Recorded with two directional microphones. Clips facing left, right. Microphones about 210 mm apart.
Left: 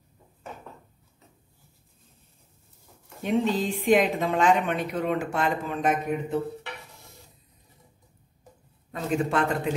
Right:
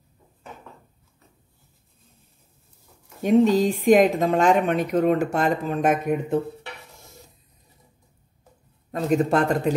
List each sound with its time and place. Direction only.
3.2 s a woman's voice: 45° right (ahead or behind)
8.9 s speech: 40° right (ahead or behind)